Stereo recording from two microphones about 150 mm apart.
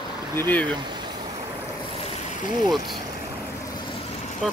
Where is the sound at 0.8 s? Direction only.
30° right (ahead or behind).